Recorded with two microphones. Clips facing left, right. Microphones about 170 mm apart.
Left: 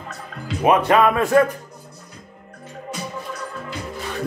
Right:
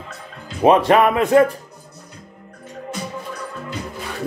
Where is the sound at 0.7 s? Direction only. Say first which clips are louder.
Right 2 dB; 30° right (ahead or behind).